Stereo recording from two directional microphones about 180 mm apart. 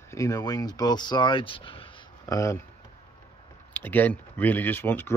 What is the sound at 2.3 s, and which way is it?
Speech, 15° left (ahead or behind).